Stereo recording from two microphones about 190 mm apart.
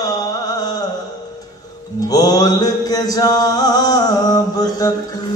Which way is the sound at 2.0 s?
20° left (ahead or behind).